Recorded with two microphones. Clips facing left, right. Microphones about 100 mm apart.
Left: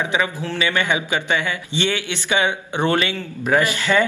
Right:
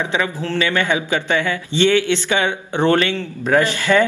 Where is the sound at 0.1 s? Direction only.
15° left (ahead or behind).